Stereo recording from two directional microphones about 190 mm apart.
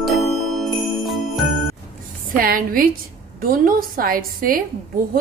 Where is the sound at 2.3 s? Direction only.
50° right (ahead or behind).